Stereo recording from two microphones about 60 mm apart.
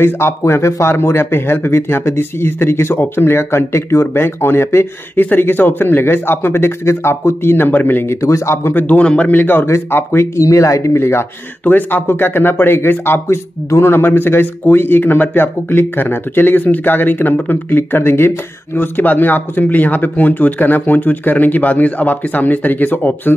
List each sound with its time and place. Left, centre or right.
0.0 s speech: left
5.2 s speech: left
8.2 s speech: left
8.7 s speech: left
9.4 s speech: left
11.0 s speech: left
11.6 s speech: left